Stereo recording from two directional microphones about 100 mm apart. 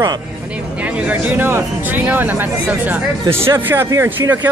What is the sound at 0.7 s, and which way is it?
Speech, 15° right (ahead or behind).